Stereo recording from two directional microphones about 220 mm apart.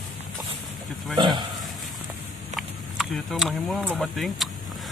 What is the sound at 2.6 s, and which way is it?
Speech, centre (ahead or behind).